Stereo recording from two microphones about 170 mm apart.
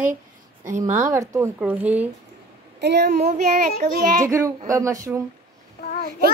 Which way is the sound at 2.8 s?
80° right.